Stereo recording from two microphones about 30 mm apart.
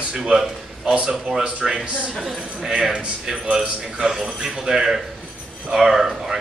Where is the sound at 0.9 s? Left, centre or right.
Right.